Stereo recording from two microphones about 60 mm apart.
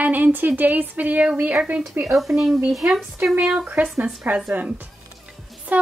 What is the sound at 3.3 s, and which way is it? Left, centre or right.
A woman's voice, right.